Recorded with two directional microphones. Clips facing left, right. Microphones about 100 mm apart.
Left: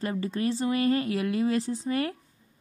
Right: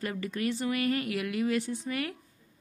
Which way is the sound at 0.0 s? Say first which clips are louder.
Left 4 dB; 30° left (ahead or behind).